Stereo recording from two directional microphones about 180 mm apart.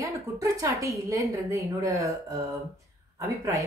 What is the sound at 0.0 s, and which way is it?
A woman's voice, 15° right (ahead or behind).